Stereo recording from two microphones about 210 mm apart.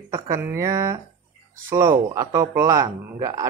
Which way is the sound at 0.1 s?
10° right (ahead or behind).